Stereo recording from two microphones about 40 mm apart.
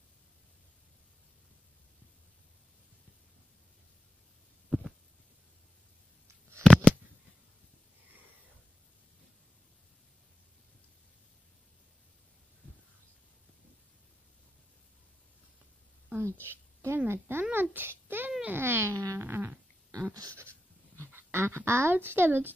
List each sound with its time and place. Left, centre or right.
6.7 s a sound: left
16.2 s a woman's voice: right
17.5 s a child's voice: right
18.5 s speech: right
20.0 s a sound: right
21.0 s speech: right
21.9 s speech: right